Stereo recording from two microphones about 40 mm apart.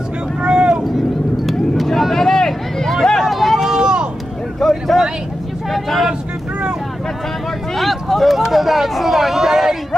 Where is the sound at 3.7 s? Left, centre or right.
Centre.